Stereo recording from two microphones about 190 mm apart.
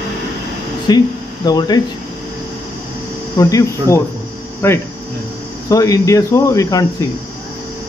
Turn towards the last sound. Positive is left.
turn(degrees=15)  # may be behind; listen again after turning